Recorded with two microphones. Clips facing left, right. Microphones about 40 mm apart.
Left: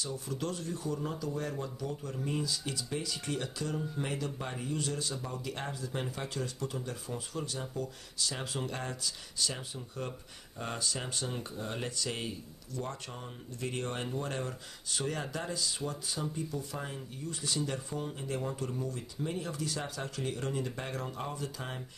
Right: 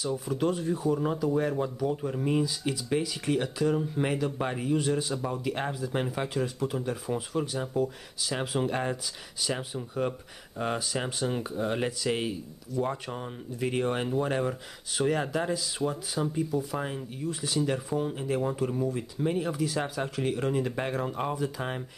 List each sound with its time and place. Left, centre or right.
0.0 s speech: centre